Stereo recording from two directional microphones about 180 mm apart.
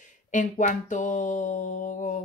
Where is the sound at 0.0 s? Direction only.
45° left (ahead or behind).